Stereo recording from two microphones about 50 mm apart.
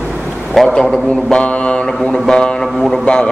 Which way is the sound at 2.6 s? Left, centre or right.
Centre.